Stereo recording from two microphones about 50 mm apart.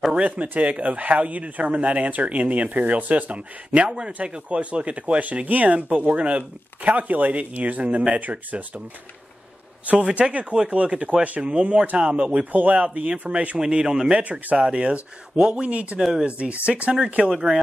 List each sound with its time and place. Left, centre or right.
0.1 s speech: right
9.8 s speech: right
13.6 s speech: centre
14.2 s speech: right
16.0 s speech: centre
16.3 s speech: right